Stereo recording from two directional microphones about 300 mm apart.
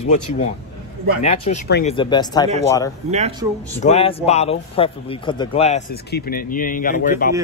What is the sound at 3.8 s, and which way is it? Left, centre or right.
Speech, left.